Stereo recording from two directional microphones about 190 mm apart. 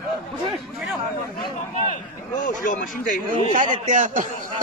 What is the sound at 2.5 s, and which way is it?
Speech, 45° left (ahead or behind).